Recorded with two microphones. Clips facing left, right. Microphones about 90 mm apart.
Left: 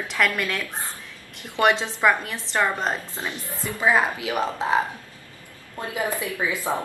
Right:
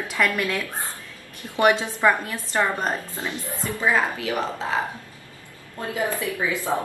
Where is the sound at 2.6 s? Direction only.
20° left (ahead or behind).